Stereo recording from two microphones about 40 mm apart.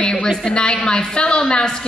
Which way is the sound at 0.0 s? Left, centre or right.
Left.